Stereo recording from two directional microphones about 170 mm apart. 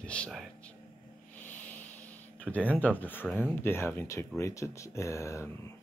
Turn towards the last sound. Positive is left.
turn(degrees=15)  # may be behind; listen again after turning